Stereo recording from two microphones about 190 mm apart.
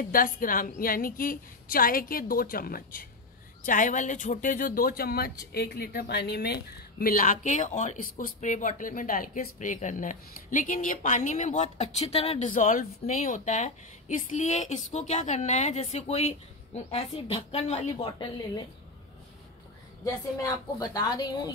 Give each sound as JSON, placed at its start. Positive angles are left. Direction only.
{"t": 0.0, "sound": "a woman's voice", "side_deg": 50}
{"t": 20.1, "sound": "a woman's voice", "side_deg": 20}